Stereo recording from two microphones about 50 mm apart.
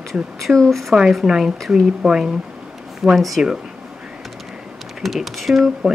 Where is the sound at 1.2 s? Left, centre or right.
Centre.